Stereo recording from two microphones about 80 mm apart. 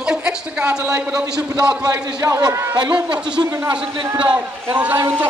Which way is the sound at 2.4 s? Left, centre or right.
Right.